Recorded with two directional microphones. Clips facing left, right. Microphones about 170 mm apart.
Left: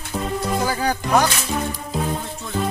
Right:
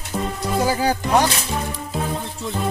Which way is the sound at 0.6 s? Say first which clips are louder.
Right 6 dB; 25° right (ahead or behind).